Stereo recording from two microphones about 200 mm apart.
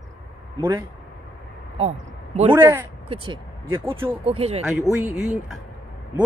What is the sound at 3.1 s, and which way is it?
Speech, 25° right (ahead or behind).